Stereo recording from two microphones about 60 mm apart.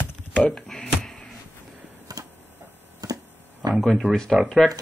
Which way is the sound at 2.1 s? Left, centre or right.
Right.